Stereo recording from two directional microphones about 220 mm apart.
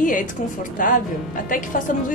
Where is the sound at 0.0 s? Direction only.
35° left (ahead or behind).